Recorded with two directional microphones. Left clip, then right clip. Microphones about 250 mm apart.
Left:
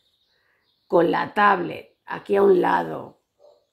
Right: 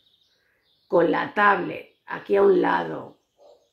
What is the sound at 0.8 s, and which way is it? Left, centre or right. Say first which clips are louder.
Speech: left 1 dB; left.